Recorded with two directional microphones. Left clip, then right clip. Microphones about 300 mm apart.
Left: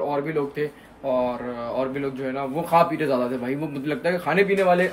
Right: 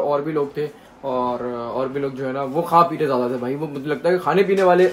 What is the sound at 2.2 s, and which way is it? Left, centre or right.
Speech, centre.